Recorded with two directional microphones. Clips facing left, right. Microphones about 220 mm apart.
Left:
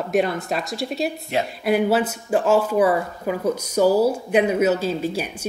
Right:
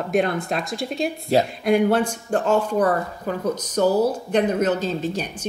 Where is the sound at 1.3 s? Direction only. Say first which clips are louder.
Right 7 dB; 35° right (ahead or behind).